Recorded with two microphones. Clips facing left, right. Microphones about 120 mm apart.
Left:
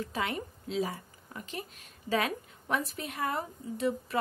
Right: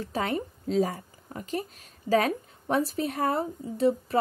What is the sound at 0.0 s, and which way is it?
Speech, 40° right (ahead or behind).